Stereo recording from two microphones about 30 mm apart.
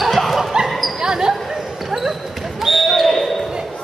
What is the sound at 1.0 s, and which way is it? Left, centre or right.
Basketball bounce, right.